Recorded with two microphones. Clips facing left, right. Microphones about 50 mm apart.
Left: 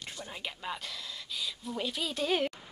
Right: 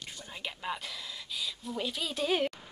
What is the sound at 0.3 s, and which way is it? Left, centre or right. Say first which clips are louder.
Speech: right 2 dB; centre.